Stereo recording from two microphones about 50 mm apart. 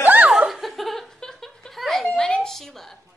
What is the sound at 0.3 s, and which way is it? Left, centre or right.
Laughter, centre.